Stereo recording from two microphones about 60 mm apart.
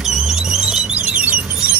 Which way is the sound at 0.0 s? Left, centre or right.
Centre.